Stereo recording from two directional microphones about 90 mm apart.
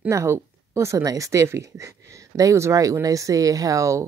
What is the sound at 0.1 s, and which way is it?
Speech, 35° right (ahead or behind).